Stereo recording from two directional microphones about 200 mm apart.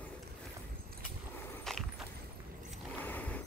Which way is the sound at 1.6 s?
Centre (ahead or behind).